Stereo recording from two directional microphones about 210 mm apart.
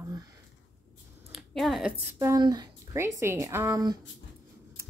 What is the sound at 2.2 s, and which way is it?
Speech, 15° right (ahead or behind).